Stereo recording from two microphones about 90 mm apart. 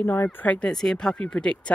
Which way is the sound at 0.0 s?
25° left (ahead or behind).